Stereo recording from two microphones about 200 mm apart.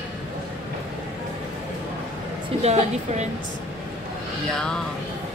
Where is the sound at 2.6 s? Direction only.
35° right (ahead or behind).